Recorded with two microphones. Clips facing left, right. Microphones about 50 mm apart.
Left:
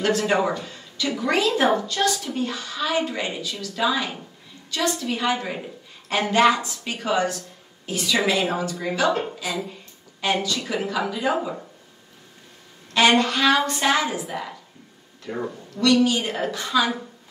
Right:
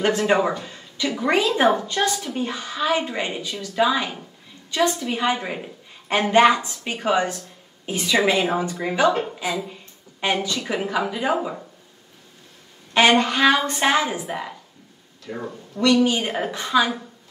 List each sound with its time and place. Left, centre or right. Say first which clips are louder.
0.0 s a woman's voice: right 2 dB; right
12.9 s a woman's voice: right 1 dB; right
15.2 s speech: left 2 dB; centre
15.7 s a woman's voice: right 1 dB; right